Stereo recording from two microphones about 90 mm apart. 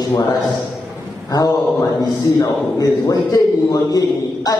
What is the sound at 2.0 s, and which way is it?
A man's voice, 40° left (ahead or behind).